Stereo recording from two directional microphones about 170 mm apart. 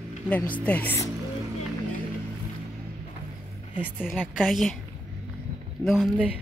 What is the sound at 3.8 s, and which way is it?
Speech, 5° right (ahead or behind).